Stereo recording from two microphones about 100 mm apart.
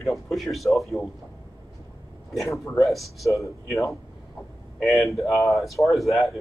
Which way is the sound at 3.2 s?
30° left (ahead or behind).